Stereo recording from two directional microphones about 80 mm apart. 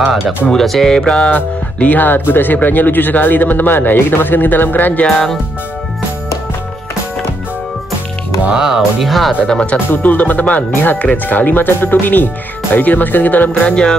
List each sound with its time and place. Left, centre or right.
0.5 s speech: centre; by 5.0 s left
5.0 s speech: centre
8.5 s speech: centre
9.5 s speech: centre